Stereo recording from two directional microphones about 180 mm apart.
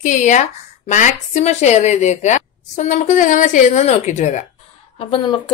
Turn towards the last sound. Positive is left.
turn(degrees=25)  # may be behind; listen again after turning